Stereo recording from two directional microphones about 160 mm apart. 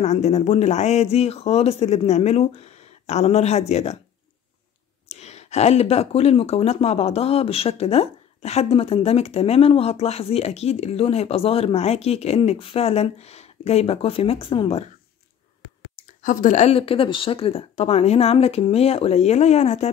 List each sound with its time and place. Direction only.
0.0 s speech: 45° left (ahead or behind)
5.0 s speech: 40° left (ahead or behind)
16.2 s speech: 55° left (ahead or behind)